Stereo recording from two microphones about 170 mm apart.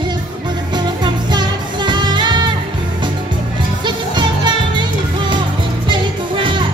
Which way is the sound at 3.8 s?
25° right (ahead or behind).